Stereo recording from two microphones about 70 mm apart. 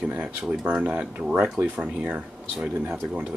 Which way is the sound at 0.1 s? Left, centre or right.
Right.